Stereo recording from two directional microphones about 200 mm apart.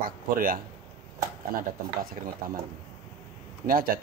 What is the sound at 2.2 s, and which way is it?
Speech, 40° right (ahead or behind).